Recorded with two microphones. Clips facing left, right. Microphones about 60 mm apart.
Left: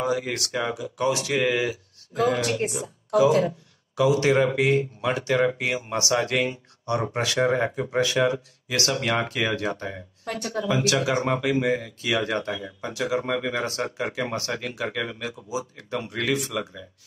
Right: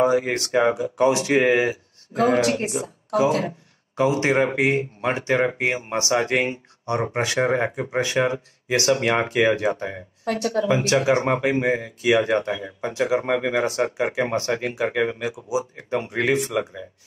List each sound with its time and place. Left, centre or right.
0.0 s speech: right
2.6 s speech: right
3.3 s speech: right